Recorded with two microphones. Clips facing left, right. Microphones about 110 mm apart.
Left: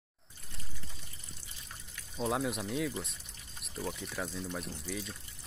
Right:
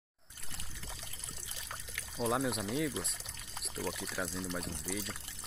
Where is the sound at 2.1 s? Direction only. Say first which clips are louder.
Even; centre (ahead or behind).